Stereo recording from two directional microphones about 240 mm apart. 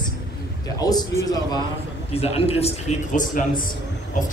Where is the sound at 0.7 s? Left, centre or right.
Centre.